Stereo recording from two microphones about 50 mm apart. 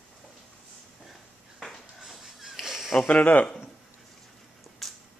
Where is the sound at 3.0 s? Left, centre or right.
Left.